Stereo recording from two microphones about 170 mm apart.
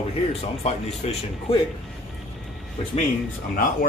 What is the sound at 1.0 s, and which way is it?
Speech, 40° left (ahead or behind).